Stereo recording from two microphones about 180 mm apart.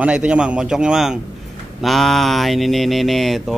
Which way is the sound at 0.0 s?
5° right (ahead or behind).